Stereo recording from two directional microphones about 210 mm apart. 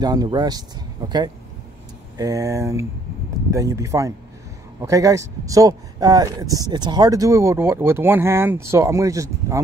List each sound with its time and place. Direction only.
0.0 s speech: 20° right (ahead or behind)